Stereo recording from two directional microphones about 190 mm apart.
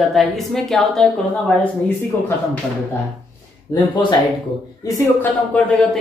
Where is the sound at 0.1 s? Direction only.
Centre (ahead or behind).